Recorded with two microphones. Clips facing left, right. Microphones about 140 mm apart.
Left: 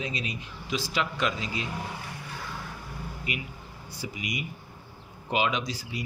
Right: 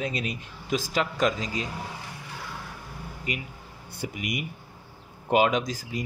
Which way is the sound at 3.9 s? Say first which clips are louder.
Right 3 dB; 50° right (ahead or behind).